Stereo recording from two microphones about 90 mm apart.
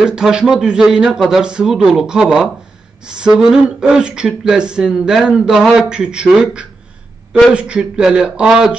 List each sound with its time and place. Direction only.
0.0 s speech: 10° right (ahead or behind)